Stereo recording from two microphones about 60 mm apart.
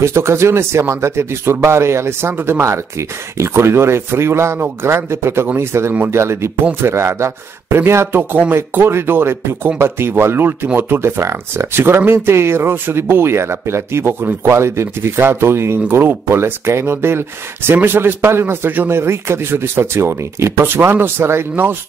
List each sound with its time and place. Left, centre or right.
0.0 s speech: right
2.6 s speech: right